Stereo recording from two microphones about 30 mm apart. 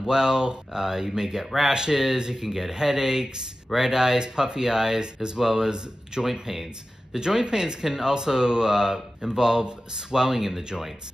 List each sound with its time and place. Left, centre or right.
0.0 s speech: right
1.7 s speech: right
2.4 s speech: centre
6.5 s speech: centre
7.2 s speech: right